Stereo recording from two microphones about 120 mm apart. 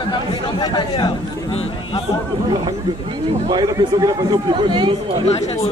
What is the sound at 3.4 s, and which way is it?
Speech, 35° right (ahead or behind).